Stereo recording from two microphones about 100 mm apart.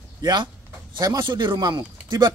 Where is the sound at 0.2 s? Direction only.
50° right (ahead or behind).